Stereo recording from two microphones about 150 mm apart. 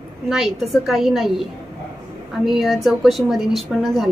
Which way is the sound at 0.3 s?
Centre (ahead or behind).